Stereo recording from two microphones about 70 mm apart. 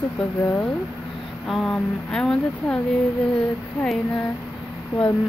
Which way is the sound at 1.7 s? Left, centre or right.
Centre.